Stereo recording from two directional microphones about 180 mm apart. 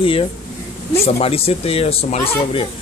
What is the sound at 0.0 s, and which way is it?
Speech, 30° left (ahead or behind).